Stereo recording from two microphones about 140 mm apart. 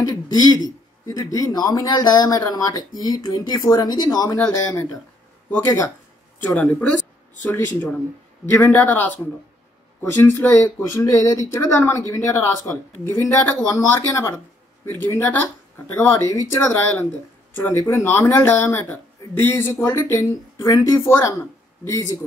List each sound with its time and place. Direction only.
0.0 s a man's voice: 30° left (ahead or behind)
6.4 s speech: 10° left (ahead or behind)
10.2 s a man's voice: 20° left (ahead or behind)